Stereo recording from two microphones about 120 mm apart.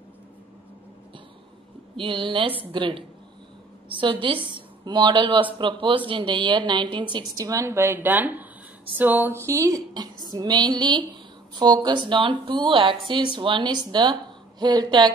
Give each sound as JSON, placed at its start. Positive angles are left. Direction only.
{"t": 2.0, "sound": "a woman's voice", "side_deg": -45}